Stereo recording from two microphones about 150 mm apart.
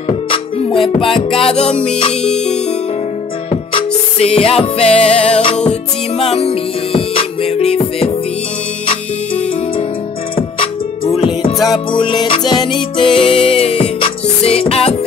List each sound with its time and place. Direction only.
0.3 s music: 35° left (ahead or behind)
3.4 s music: 40° left (ahead or behind)
11.1 s music: 40° left (ahead or behind)
11.5 s music: centre (ahead or behind)
11.9 s music: 35° left (ahead or behind)